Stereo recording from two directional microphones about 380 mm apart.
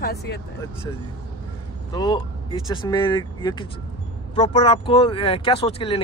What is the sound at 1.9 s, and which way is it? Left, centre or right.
Speech, centre.